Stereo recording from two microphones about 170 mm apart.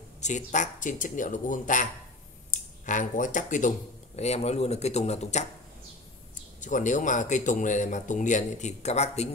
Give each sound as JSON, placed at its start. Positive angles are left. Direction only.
{"t": 0.2, "sound": "speech", "side_deg": 45}
{"t": 6.6, "sound": "speech", "side_deg": 45}